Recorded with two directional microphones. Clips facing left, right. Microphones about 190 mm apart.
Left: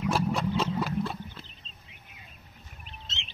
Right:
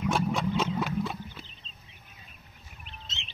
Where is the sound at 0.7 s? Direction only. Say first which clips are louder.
Even; centre (ahead or behind).